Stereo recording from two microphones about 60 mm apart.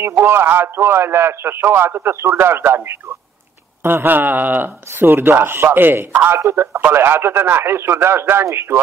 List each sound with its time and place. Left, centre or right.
0.0 s a man's voice: right